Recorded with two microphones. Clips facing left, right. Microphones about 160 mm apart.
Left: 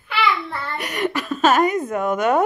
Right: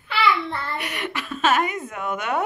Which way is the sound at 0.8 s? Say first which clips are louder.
Left 6 dB; 40° left (ahead or behind).